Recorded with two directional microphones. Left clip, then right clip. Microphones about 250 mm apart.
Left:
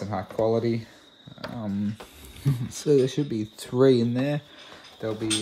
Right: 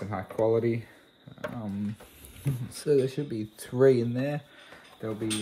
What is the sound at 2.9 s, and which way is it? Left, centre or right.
Speech, centre.